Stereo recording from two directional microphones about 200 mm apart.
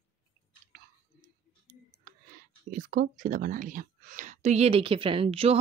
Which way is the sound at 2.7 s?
45° right (ahead or behind).